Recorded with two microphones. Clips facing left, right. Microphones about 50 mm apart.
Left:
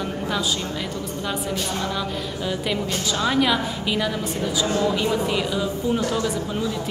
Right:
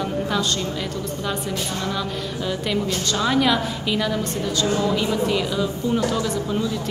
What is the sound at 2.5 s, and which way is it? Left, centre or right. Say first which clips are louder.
A woman's voice: right 2 dB; centre.